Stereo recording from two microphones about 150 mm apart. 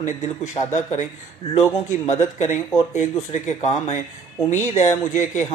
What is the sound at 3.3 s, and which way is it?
A man's voice, 50° left (ahead or behind).